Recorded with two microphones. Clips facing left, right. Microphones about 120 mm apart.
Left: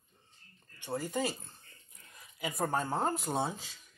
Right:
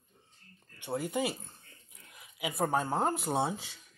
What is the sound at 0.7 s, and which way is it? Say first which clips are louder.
Speech: right 2 dB; 10° right (ahead or behind).